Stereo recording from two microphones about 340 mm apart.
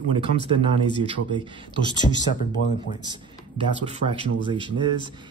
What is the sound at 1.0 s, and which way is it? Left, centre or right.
Speech, centre.